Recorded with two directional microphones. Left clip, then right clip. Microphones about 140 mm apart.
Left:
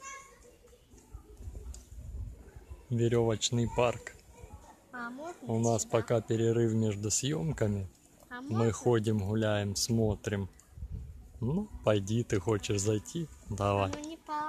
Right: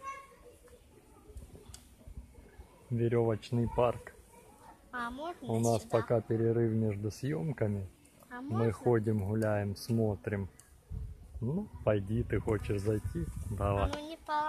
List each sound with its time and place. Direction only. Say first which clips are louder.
3.0 s speech: left 2 dB; 30° left (ahead or behind)
4.9 s a sound: right 3 dB; 15° right (ahead or behind)
5.7 s speech: left 1 dB; 15° left (ahead or behind)
6.5 s speech: left 2 dB; 30° left (ahead or behind)
11.4 s speech: left 2 dB; 45° left (ahead or behind)
13.9 s a sound: right 2 dB; 30° right (ahead or behind)